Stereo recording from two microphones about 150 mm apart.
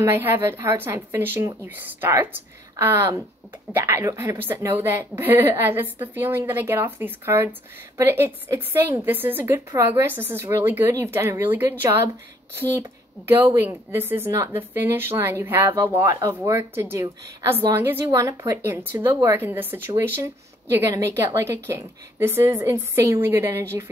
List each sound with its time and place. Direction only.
0.0 s a woman's voice: 15° right (ahead or behind)
13.7 s a woman's voice: 15° right (ahead or behind)